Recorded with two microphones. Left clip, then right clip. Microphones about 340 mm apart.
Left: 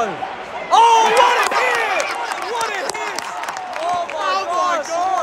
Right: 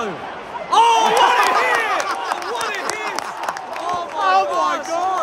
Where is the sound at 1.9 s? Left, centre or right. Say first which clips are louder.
Even; centre.